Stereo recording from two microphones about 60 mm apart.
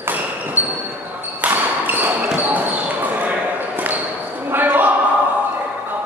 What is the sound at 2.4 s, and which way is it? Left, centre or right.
Basketball bounce, right.